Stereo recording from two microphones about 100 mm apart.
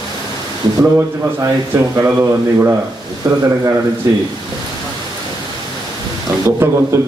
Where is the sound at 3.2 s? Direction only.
35° right (ahead or behind).